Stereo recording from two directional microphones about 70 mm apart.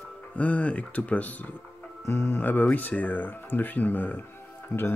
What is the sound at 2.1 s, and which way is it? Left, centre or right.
Speech, left.